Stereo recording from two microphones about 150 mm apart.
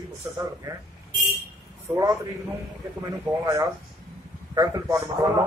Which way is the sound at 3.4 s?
20° right (ahead or behind).